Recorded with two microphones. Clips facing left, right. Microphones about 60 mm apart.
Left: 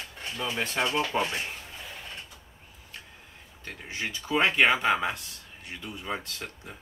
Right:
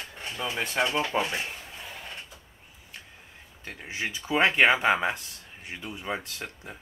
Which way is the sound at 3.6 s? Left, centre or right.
Centre.